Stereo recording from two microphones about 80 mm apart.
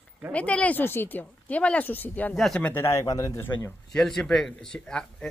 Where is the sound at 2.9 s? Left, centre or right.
Left.